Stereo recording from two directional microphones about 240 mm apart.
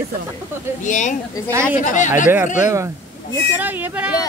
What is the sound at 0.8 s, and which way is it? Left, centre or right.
Speech, left.